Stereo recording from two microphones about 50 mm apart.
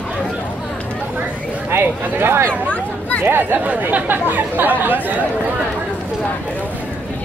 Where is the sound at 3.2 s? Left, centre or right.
Right.